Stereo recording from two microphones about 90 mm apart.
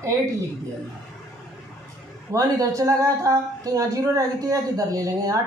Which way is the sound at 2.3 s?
40° right (ahead or behind).